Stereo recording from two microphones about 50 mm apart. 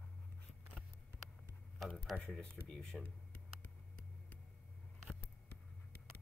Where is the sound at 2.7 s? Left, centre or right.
Centre.